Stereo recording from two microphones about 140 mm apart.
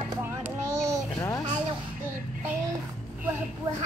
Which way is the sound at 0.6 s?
20° right (ahead or behind).